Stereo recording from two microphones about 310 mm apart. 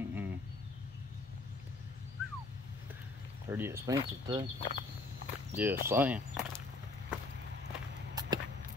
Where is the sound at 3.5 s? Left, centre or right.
Centre.